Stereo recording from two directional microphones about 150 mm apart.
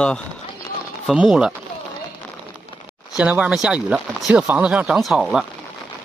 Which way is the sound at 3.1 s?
10° right (ahead or behind).